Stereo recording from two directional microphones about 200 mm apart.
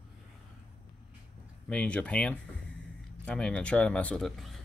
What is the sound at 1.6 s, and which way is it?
Speech, 5° left (ahead or behind).